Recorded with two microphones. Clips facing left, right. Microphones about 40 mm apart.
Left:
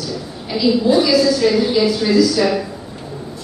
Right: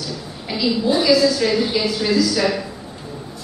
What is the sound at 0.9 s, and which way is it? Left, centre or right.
A woman's voice, centre.